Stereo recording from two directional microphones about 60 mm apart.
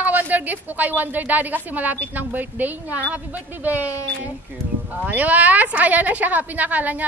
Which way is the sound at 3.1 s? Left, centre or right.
Right.